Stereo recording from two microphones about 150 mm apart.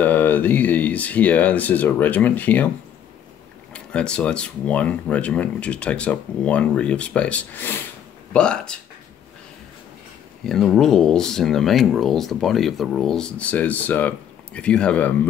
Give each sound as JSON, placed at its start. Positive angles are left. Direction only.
{"t": 0.0, "sound": "speech", "side_deg": 10}
{"t": 3.7, "sound": "speech", "side_deg": 5}
{"t": 10.4, "sound": "speech", "side_deg": 5}